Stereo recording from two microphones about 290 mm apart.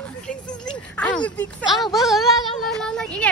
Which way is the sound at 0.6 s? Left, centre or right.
Centre.